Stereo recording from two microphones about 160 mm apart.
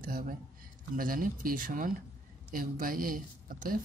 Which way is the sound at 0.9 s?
60° right (ahead or behind).